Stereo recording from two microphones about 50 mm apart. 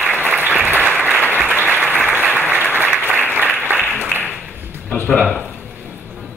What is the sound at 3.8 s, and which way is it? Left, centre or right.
Applause, left.